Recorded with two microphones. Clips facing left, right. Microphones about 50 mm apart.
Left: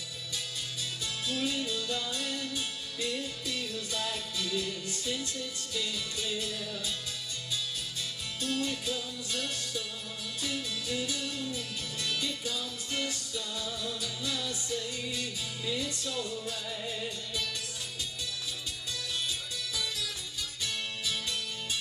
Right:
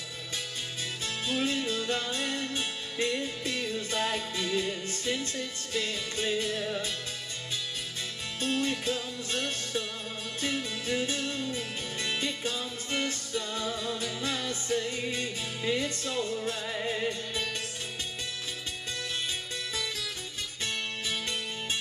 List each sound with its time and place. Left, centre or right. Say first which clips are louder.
1.0 s music: right 3 dB; right
8.4 s music: right 3 dB; right
19.7 s music: even; right